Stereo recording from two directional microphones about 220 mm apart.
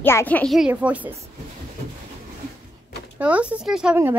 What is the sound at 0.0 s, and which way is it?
A woman's voice, 10° left (ahead or behind).